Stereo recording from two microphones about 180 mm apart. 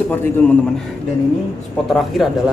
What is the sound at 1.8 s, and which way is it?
Speech, centre (ahead or behind).